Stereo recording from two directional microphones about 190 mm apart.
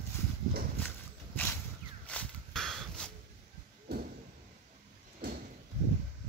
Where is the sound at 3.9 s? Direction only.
55° right (ahead or behind).